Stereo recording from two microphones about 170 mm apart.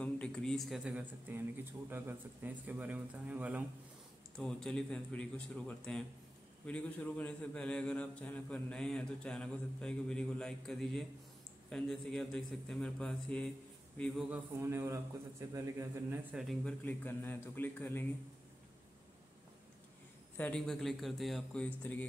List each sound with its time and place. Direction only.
0.0 s speech: 5° left (ahead or behind)
4.4 s a man's voice: 5° left (ahead or behind)
14.3 s speech: 15° right (ahead or behind)
16.3 s a man's voice: 5° left (ahead or behind)
20.3 s a man's voice: 5° left (ahead or behind)